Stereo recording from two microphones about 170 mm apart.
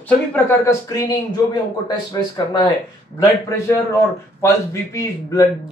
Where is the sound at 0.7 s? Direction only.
20° left (ahead or behind).